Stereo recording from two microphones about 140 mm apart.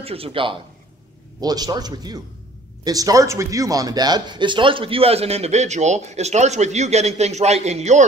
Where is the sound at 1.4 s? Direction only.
30° right (ahead or behind).